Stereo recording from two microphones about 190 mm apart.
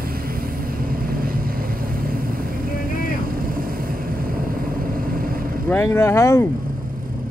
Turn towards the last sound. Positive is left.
turn(degrees=15)  # may be behind; listen again after turning